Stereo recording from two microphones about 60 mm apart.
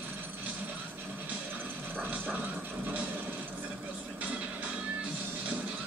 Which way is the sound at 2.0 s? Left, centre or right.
Right.